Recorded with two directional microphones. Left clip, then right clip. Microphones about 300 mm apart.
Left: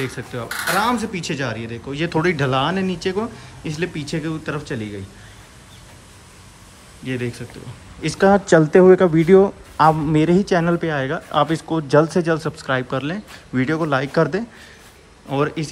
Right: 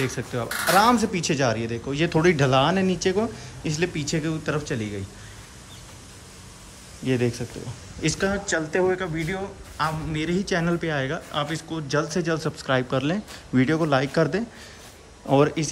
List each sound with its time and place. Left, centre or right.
0.0 s speech: centre
7.1 s speech: centre
9.2 s speech: left
9.8 s speech: centre